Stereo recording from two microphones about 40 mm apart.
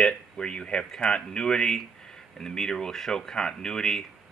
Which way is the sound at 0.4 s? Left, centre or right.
Left.